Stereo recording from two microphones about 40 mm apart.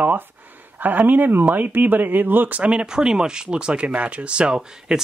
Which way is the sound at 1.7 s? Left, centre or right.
Right.